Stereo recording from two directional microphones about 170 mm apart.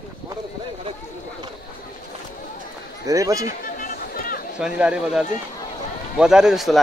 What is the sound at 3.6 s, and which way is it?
Chatter, 55° left (ahead or behind).